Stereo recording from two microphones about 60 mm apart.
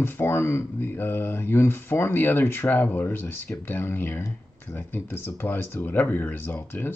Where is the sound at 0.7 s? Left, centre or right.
Left.